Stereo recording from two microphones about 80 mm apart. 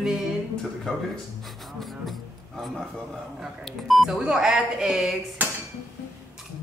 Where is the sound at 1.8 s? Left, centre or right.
Centre.